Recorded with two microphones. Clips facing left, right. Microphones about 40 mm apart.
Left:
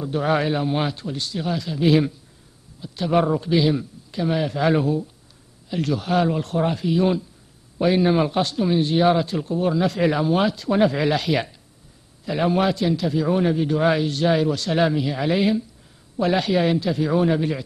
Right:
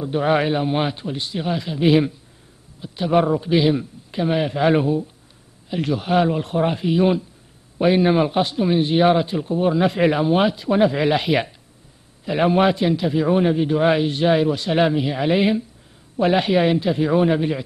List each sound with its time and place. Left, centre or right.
0.0 s a man's voice: right
3.1 s a man's voice: centre